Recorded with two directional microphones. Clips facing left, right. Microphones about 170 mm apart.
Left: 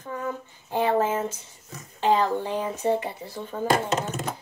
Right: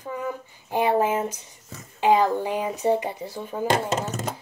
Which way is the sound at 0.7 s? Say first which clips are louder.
Right 1 dB; 15° right (ahead or behind).